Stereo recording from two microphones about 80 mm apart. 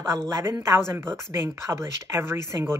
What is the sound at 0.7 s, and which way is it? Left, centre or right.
Speech, right.